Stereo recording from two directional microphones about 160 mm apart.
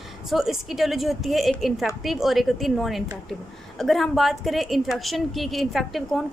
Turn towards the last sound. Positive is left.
turn(degrees=0)  # may be behind; listen again after turning